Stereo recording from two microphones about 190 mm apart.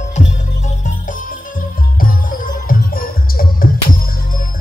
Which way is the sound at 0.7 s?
40° left (ahead or behind).